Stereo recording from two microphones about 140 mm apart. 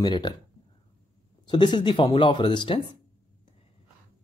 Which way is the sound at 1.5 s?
30° left (ahead or behind).